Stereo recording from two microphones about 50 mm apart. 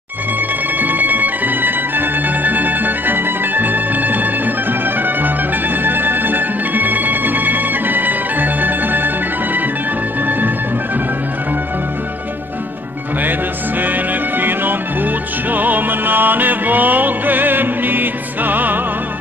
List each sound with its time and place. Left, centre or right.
0.7 s music: right
13.7 s music: right